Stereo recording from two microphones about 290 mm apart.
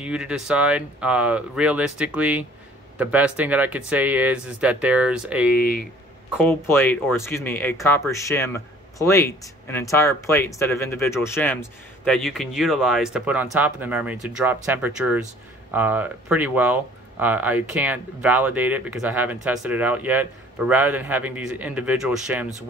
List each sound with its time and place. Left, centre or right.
0.0 s speech: centre
5.5 s speech: left
6.3 s speech: centre